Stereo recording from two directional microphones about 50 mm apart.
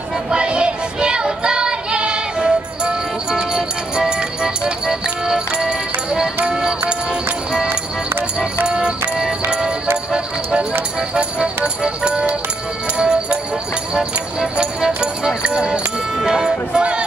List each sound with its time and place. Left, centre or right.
0.3 s child singing: centre
6.4 s music: centre
8.6 s music: centre
11.0 s speech: centre